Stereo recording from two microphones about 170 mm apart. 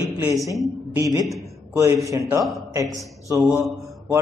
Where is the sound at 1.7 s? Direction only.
20° right (ahead or behind).